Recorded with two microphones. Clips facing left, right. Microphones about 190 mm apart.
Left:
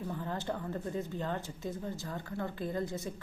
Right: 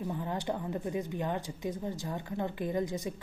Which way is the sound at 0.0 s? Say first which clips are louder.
Right 3 dB; 15° right (ahead or behind).